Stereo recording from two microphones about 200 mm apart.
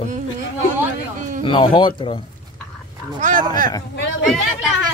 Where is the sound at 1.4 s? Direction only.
25° left (ahead or behind).